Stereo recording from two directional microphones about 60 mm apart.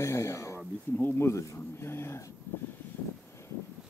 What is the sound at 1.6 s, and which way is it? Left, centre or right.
Speech, left.